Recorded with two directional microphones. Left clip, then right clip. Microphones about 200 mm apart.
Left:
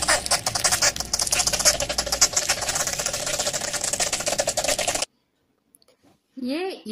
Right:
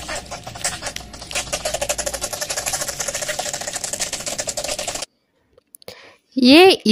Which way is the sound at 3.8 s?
Centre (ahead or behind).